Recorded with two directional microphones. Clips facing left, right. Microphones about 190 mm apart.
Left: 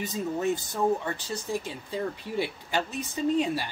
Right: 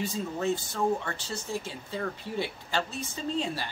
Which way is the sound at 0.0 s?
20° left (ahead or behind).